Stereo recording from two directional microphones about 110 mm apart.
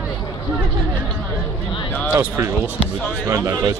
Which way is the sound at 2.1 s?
25° right (ahead or behind).